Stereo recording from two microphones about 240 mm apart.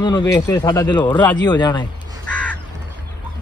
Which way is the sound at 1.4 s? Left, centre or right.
Centre.